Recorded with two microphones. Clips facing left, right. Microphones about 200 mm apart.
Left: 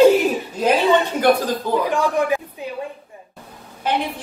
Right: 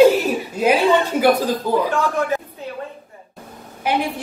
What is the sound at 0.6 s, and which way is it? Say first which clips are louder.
Speech: right 1 dB; 10° right (ahead or behind).